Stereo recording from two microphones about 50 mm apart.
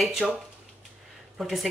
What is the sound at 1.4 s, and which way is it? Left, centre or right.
Speech, centre.